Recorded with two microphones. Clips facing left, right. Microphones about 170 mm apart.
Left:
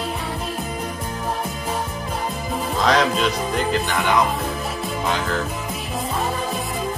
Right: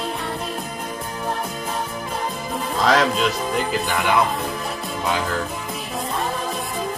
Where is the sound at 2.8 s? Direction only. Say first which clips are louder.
Even; centre (ahead or behind).